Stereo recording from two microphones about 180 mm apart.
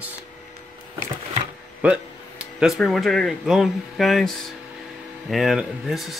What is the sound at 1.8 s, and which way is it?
Speech, 10° right (ahead or behind).